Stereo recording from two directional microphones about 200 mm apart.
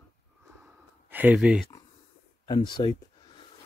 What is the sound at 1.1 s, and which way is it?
Speech, 10° right (ahead or behind).